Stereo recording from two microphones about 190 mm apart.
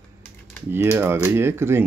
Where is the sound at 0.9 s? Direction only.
15° right (ahead or behind).